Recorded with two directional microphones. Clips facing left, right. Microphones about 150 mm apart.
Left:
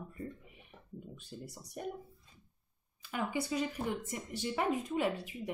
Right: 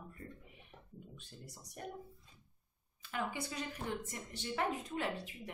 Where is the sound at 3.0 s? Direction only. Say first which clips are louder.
Left 4 dB; 10° left (ahead or behind).